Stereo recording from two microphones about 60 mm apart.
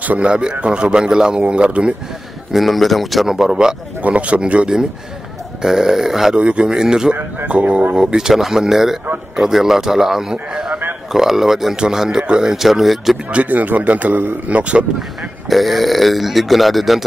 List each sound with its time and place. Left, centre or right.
0.0 s a man's voice: right
0.3 s speech: centre
2.5 s speech: centre
4.0 s speech: right; by 6.3 s centre
6.3 s speech: centre
13.3 s speech: right
15.5 s speech: centre